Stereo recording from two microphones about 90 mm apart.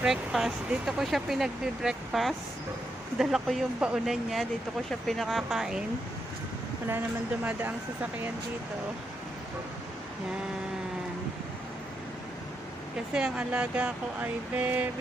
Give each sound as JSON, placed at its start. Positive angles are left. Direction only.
{"t": 0.0, "sound": "speech", "side_deg": -5}
{"t": 7.4, "sound": "speech", "side_deg": -20}
{"t": 13.1, "sound": "speech", "side_deg": -15}